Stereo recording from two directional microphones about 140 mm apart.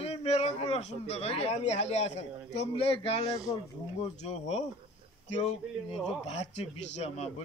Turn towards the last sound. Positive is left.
turn(degrees=50)  # may be behind; listen again after turning